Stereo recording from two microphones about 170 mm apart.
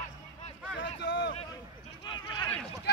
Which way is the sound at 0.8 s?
90° left.